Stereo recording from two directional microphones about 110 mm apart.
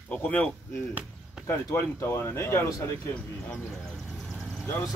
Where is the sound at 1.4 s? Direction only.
25° left (ahead or behind).